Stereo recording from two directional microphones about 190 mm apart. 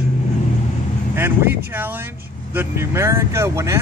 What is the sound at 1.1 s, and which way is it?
Speech, 10° right (ahead or behind).